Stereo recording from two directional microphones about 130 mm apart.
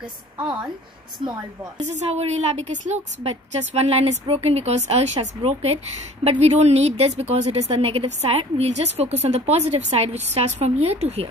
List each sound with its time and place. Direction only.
0.4 s a woman's voice: 35° right (ahead or behind)
1.8 s a woman's voice: 60° right (ahead or behind)
3.3 s a woman's voice: 50° right (ahead or behind)